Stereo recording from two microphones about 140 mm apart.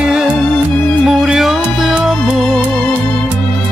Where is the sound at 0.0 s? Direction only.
5° right (ahead or behind).